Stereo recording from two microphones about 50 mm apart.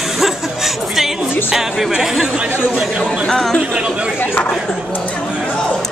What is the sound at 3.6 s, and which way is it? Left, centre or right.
Speech, right.